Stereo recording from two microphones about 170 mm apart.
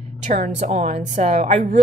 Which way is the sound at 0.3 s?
45° right (ahead or behind).